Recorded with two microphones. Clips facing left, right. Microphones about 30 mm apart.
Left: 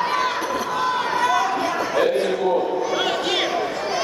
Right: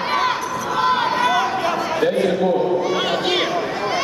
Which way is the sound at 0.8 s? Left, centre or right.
Right.